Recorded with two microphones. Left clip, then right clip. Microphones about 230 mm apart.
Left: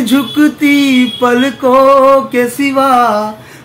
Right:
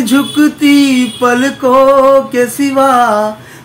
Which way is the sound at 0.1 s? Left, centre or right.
Centre.